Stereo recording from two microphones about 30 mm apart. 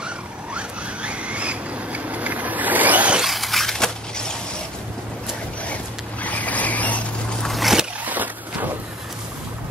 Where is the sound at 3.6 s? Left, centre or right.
Centre.